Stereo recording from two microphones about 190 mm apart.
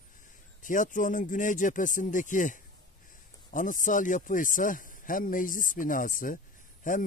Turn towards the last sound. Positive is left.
turn(degrees=45)  # may be behind; listen again after turning